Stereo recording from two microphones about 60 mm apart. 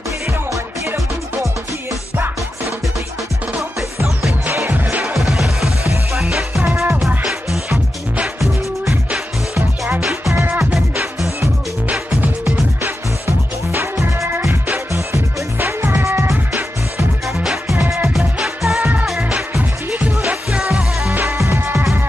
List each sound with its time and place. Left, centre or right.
5.0 s music: centre
6.6 s music: right
7.2 s music: centre
10.6 s music: centre
13.9 s music: right
15.8 s music: right
17.4 s music: centre
17.7 s music: right
18.1 s music: centre
18.8 s music: right
19.1 s music: centre
21.1 s music: right
21.5 s music: right